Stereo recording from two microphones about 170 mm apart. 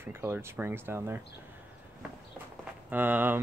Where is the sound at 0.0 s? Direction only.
15° right (ahead or behind).